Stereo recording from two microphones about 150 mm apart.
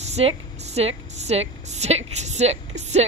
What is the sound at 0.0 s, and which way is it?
A woman's voice, 45° right (ahead or behind).